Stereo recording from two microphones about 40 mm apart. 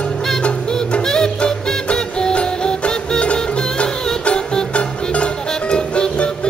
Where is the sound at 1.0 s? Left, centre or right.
Centre.